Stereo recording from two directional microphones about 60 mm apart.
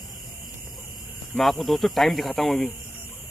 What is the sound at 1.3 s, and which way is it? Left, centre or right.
Speech, centre.